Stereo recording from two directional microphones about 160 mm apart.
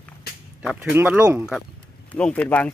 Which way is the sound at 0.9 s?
10° right (ahead or behind).